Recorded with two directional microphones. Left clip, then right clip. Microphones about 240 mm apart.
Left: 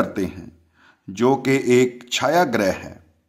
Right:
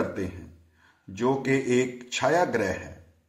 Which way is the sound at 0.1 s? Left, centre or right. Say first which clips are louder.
Left 7 dB; left.